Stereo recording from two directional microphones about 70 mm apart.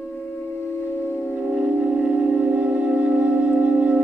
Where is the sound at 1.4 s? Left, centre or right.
Centre.